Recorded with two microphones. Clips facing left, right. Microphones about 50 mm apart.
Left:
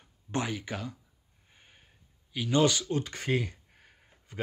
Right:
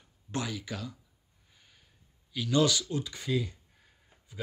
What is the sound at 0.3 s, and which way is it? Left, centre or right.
Speech, left.